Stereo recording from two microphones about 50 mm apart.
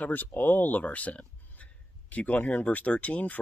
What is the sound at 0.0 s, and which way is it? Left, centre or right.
Speech, left.